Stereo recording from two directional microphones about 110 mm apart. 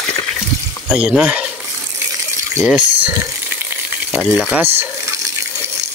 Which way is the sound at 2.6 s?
10° right (ahead or behind).